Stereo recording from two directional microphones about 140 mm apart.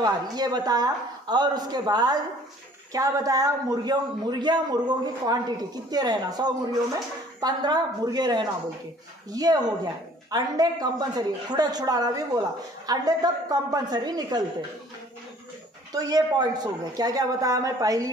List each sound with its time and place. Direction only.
0.0 s speech: 30° right (ahead or behind)
15.9 s speech: 25° right (ahead or behind)